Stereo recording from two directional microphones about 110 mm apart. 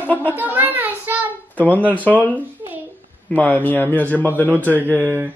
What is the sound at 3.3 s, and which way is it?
Speech, 15° left (ahead or behind).